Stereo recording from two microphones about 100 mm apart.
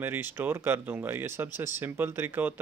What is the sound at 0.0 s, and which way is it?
Speech, 20° right (ahead or behind).